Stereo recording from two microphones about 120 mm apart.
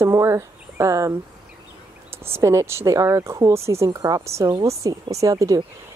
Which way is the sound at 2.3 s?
25° right (ahead or behind).